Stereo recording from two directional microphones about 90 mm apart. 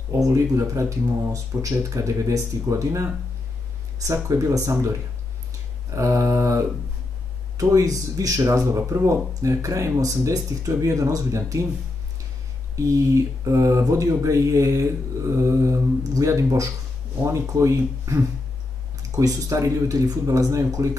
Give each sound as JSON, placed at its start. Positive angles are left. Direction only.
{"t": 0.1, "sound": "speech", "side_deg": -35}
{"t": 5.9, "sound": "speech", "side_deg": -30}
{"t": 12.7, "sound": "speech", "side_deg": -35}